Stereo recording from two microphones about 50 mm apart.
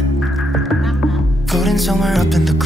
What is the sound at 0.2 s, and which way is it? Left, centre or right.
Music, centre.